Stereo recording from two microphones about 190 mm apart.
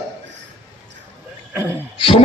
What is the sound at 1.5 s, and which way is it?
Speech, 10° right (ahead or behind).